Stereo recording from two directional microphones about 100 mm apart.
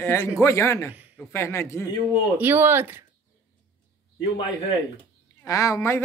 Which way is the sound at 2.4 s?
20° right (ahead or behind).